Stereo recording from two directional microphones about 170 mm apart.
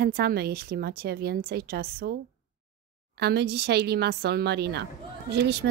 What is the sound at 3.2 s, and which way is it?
A woman's voice, 75° right (ahead or behind).